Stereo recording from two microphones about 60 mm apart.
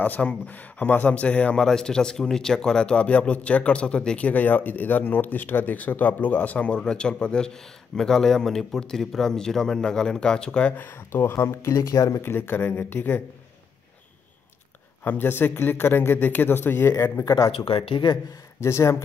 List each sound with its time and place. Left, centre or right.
0.0 s a man's voice: left
1.6 s speech: centre
4.3 s speech: left; by 10.7 s centre
10.8 s speech: left
11.7 s speech: left
12.2 s speech: left
15.0 s speech: left
17.2 s speech: left
18.6 s speech: left